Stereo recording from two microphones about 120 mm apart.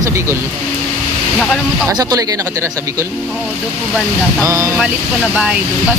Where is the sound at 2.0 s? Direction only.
30° right (ahead or behind).